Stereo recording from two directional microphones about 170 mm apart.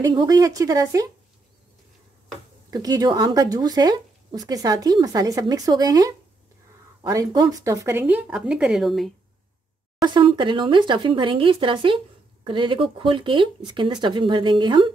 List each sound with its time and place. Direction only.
0.0 s speech: 25° right (ahead or behind)
2.7 s speech: 25° right (ahead or behind); by 9.1 s centre (ahead or behind)
10.0 s speech: 30° right (ahead or behind)